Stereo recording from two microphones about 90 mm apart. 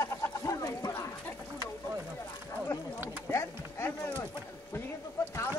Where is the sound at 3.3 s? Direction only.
30° left (ahead or behind).